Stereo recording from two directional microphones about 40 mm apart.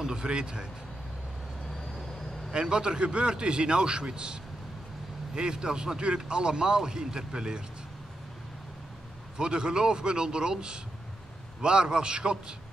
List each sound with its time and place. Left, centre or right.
0.0 s speech: centre
2.5 s speech: right
9.4 s speech: right